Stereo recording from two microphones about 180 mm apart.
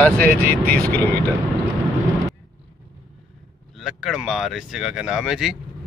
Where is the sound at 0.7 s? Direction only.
55° right (ahead or behind).